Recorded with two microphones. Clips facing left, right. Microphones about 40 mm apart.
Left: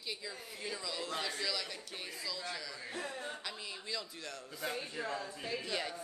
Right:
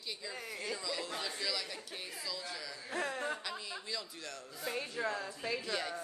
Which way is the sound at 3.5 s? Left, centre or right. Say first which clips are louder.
Right 1 dB; centre.